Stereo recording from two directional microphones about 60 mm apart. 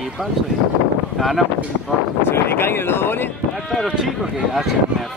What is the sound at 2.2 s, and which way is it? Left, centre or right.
Speech, left.